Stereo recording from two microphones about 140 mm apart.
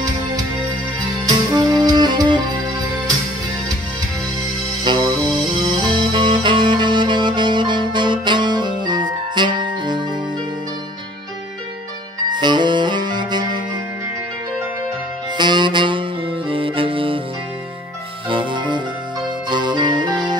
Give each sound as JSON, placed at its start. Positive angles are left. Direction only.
{"t": 0.9, "sound": "music", "side_deg": -30}
{"t": 4.8, "sound": "music", "side_deg": -30}
{"t": 12.3, "sound": "music", "side_deg": -30}
{"t": 15.3, "sound": "music", "side_deg": -35}
{"t": 18.3, "sound": "music", "side_deg": -35}